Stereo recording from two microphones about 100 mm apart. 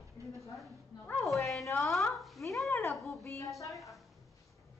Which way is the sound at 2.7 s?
30° left (ahead or behind).